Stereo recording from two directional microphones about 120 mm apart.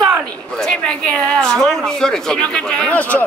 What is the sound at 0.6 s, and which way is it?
Speech, 5° left (ahead or behind).